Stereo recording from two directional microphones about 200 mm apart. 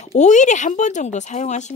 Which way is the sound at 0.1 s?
35° left (ahead or behind).